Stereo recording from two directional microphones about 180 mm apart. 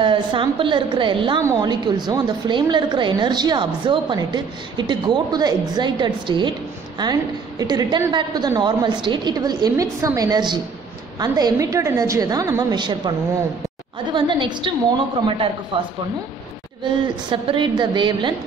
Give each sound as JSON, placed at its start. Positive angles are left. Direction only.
{"t": 0.0, "sound": "a woman's voice", "side_deg": -30}
{"t": 14.1, "sound": "a woman's voice", "side_deg": -25}
{"t": 17.3, "sound": "a woman's voice", "side_deg": -25}